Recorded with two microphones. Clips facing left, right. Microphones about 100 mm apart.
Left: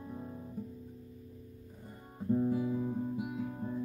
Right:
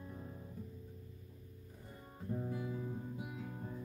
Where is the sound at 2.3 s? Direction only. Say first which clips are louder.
Left 11 dB; 25° left (ahead or behind).